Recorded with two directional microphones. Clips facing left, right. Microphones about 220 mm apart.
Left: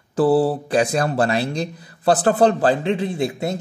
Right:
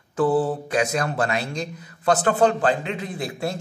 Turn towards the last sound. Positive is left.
turn(degrees=25)  # may be behind; listen again after turning